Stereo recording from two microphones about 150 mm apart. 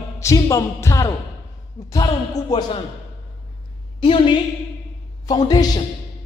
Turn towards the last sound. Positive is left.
turn(degrees=25)  # may be behind; listen again after turning